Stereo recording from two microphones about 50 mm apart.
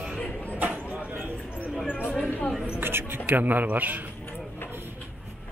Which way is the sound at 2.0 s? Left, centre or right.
Left.